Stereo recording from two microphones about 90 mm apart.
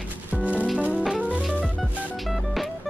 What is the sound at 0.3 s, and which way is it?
Music, 15° right (ahead or behind).